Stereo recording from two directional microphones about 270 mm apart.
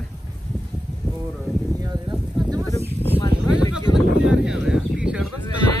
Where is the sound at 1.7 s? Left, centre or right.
Centre.